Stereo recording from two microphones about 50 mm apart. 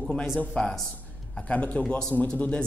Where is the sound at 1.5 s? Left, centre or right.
Left.